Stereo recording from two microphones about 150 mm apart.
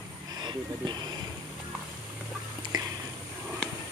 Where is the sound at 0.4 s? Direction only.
30° right (ahead or behind).